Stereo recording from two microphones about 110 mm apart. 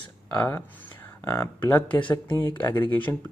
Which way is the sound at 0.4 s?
20° left (ahead or behind).